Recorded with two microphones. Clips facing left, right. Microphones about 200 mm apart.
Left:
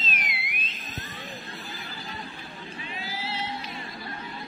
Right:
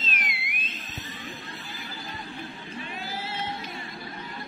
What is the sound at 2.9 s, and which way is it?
Singing, 50° right (ahead or behind).